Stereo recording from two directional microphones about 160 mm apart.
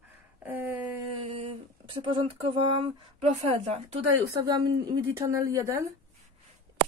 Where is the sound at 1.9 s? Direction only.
35° right (ahead or behind).